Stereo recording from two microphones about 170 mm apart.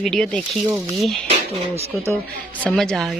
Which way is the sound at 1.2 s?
35° right (ahead or behind).